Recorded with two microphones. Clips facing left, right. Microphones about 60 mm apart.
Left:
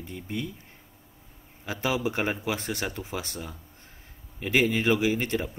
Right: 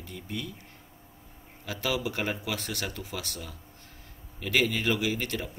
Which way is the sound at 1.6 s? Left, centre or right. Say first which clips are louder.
Left 3 dB; left.